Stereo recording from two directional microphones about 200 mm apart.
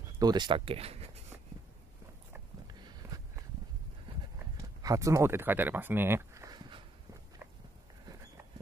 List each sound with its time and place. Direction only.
0.2 s speech: 20° right (ahead or behind)
2.7 s a sound: 20° right (ahead or behind)
4.6 s speech: 15° right (ahead or behind)